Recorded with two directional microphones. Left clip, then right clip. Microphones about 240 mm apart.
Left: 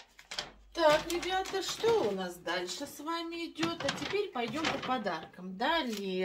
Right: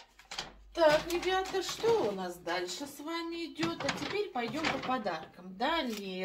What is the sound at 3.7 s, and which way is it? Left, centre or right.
Speech, left.